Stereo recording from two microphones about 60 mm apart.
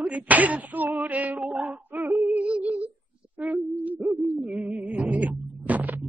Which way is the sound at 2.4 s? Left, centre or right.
Right.